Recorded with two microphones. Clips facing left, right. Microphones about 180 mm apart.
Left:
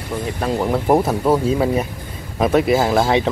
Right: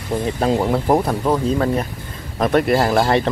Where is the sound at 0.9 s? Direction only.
5° left (ahead or behind).